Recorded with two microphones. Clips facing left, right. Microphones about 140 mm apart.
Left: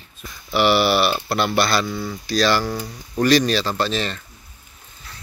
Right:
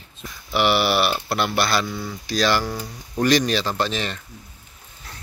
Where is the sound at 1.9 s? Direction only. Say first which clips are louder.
Left 3 dB; 5° left (ahead or behind).